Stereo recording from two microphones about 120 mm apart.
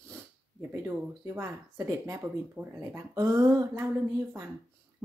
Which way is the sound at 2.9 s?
25° right (ahead or behind).